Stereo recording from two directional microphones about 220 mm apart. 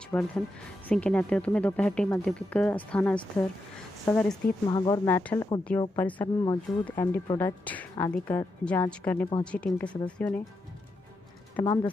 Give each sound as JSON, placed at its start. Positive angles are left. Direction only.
{"t": 0.1, "sound": "speech", "side_deg": 5}
{"t": 4.6, "sound": "a woman's voice", "side_deg": 20}
{"t": 11.5, "sound": "speech", "side_deg": 15}